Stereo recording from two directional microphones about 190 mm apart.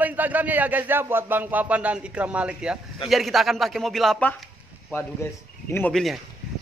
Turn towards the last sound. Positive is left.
turn(degrees=0)  # may be behind; listen again after turning